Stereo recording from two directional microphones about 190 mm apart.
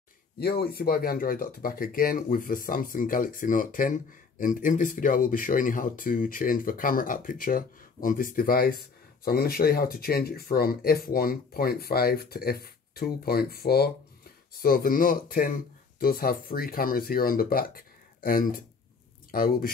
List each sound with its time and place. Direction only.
0.4 s speech: 55° left (ahead or behind)